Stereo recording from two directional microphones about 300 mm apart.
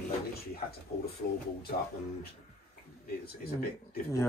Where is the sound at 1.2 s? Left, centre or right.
Left.